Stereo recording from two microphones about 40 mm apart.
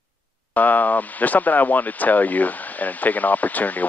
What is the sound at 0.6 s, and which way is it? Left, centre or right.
Speech, left.